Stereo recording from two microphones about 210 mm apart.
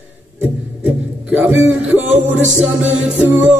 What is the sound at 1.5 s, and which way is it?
Speech, 10° right (ahead or behind).